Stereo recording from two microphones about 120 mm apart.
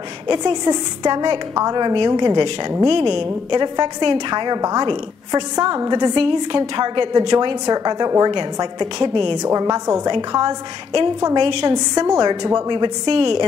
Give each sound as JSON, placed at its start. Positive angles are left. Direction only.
{"t": 0.3, "sound": "a woman's voice", "side_deg": -35}
{"t": 9.4, "sound": "a woman's voice", "side_deg": -30}
{"t": 10.1, "sound": "a woman's voice", "side_deg": -40}
{"t": 11.7, "sound": "a woman's voice", "side_deg": -35}